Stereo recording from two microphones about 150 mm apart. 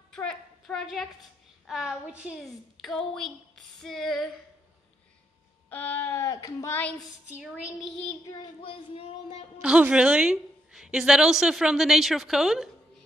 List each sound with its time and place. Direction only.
0.1 s a woman's voice: 5° left (ahead or behind)
5.7 s speech: 10° left (ahead or behind)
7.3 s a woman's voice: 5° right (ahead or behind)
8.3 s speech: 30° left (ahead or behind)
9.6 s a woman's voice: 10° right (ahead or behind)